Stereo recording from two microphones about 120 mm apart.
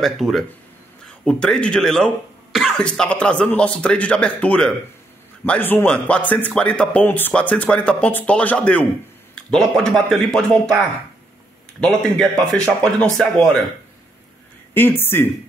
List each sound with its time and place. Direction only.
0.0 s speech: centre (ahead or behind)
14.7 s speech: 15° left (ahead or behind)